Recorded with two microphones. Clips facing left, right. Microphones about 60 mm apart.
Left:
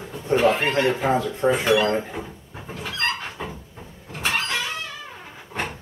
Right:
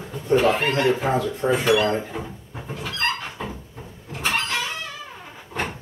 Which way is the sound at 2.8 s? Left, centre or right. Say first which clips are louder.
Even; centre.